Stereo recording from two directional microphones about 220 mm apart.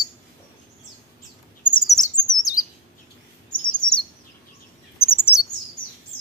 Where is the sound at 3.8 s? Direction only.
70° left (ahead or behind).